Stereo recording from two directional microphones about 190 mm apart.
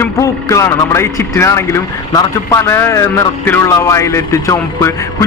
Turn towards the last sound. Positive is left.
turn(degrees=15)  # may be behind; listen again after turning